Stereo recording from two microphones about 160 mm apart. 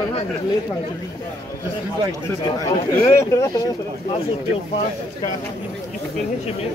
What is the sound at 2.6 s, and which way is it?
Speech, 20° left (ahead or behind).